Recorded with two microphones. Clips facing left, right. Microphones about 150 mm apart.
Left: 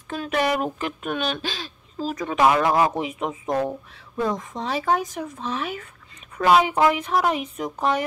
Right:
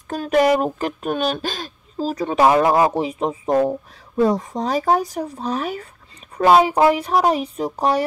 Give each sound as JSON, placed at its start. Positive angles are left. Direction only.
{"t": 0.1, "sound": "speech", "side_deg": -40}